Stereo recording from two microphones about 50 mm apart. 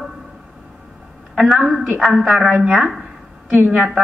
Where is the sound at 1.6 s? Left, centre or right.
Centre.